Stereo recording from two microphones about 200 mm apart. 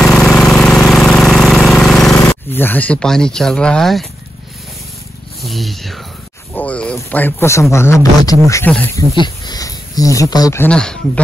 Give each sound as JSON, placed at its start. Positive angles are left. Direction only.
{"t": 0.0, "sound": "engine", "side_deg": 0}
{"t": 2.1, "sound": "speech", "side_deg": 10}
{"t": 5.4, "sound": "speech", "side_deg": 0}
{"t": 9.1, "sound": "speech", "side_deg": 20}